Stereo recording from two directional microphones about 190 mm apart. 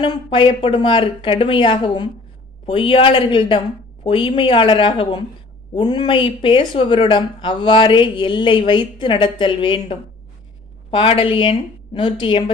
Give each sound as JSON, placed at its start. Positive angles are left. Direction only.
{"t": 0.0, "sound": "speech", "side_deg": 25}